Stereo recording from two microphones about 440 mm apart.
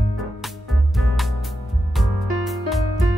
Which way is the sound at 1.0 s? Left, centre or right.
Centre.